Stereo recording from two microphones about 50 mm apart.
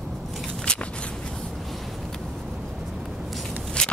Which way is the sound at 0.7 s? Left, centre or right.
Left.